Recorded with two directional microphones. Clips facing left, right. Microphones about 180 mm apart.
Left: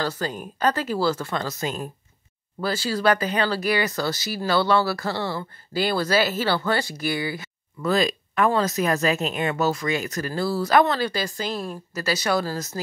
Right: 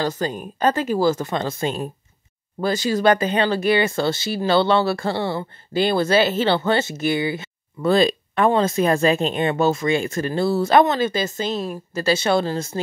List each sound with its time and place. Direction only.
0.0 s speech: 25° right (ahead or behind)